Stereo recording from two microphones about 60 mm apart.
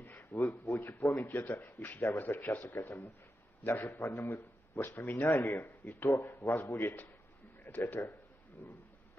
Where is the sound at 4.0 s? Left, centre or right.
Left.